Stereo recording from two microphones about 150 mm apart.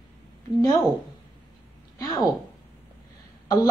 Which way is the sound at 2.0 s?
25° left (ahead or behind).